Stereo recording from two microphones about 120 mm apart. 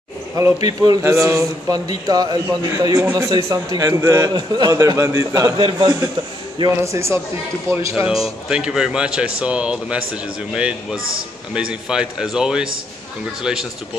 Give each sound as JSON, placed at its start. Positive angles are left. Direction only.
{"t": 0.4, "sound": "a man's voice", "side_deg": -30}
{"t": 5.6, "sound": "a man's voice", "side_deg": -40}
{"t": 6.8, "sound": "a man's voice", "side_deg": -25}
{"t": 8.1, "sound": "a man's voice", "side_deg": -5}